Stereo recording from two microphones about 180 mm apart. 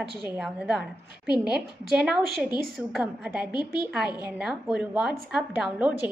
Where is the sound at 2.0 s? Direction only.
Centre (ahead or behind).